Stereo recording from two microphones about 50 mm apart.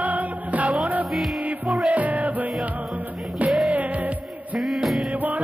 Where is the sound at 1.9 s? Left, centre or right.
Right.